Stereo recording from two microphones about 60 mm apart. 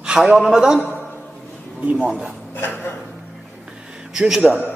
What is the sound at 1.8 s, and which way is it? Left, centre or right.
Speech, centre.